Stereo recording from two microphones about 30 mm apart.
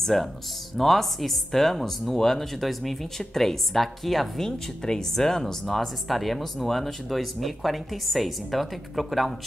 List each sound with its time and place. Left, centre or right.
0.0 s speech: centre
4.4 s speech: left
6.0 s speech: centre